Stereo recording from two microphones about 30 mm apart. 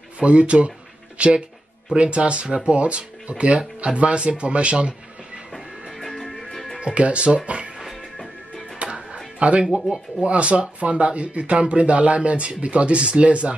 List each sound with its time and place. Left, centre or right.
0.2 s speech: right
5.9 s music: centre
6.8 s speech: right
8.9 s music: right
10.2 s speech: right